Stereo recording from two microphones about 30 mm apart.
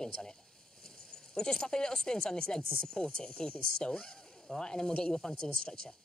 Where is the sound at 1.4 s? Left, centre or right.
Left.